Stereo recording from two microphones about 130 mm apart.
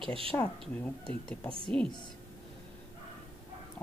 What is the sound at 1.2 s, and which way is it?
Speech, 10° left (ahead or behind).